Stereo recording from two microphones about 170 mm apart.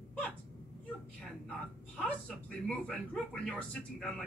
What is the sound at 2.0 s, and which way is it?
Speech, 5° left (ahead or behind).